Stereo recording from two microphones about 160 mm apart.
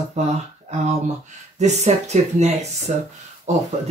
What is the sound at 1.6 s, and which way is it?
Speech, 45° right (ahead or behind).